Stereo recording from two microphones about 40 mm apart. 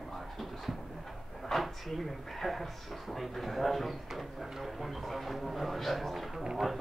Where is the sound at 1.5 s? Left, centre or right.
Centre.